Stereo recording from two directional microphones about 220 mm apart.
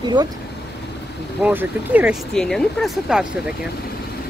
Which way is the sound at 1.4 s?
10° right (ahead or behind).